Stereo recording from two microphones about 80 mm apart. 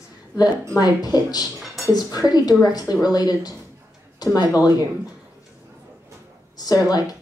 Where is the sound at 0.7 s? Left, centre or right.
Left.